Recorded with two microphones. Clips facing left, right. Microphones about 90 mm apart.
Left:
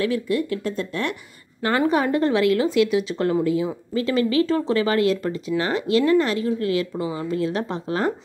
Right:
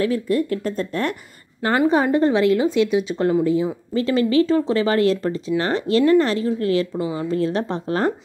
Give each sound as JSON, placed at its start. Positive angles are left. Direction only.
{"t": 0.0, "sound": "speech", "side_deg": -40}
{"t": 1.8, "sound": "speech", "side_deg": -20}